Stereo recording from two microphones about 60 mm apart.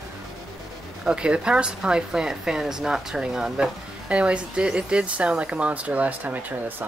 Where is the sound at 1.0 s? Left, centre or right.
Centre; by 6.9 s right.